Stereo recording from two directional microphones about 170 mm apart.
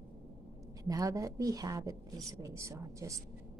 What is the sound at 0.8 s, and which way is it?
A woman's voice, 20° right (ahead or behind).